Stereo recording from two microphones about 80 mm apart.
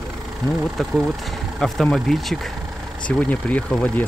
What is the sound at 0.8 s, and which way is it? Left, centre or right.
Speech, centre.